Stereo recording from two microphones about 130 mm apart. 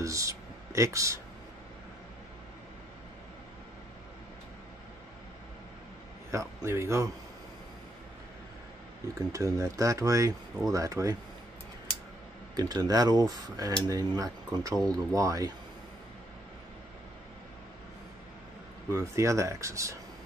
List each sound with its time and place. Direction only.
0.0 s speech: 25° right (ahead or behind)
6.3 s speech: 20° right (ahead or behind)
9.3 s speech: 25° right (ahead or behind)
12.5 s speech: 30° right (ahead or behind)
18.9 s speech: 25° right (ahead or behind)